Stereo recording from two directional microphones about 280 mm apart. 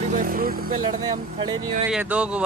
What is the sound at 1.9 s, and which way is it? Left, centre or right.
Speech, centre.